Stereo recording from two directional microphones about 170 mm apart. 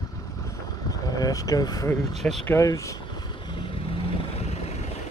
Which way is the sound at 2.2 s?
Centre (ahead or behind).